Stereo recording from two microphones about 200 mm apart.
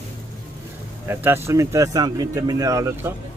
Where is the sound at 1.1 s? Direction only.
10° right (ahead or behind).